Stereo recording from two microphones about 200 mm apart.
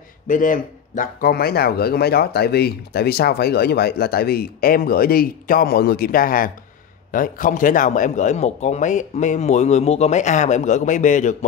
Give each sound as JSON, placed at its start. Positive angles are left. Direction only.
{"t": 0.3, "sound": "a man's voice", "side_deg": 40}